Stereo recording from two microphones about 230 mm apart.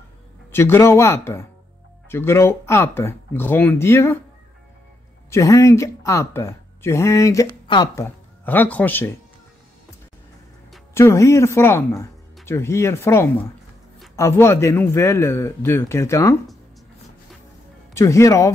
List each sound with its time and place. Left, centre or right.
0.5 s speech: centre
5.3 s speech: centre
11.0 s speech: centre
17.9 s speech: centre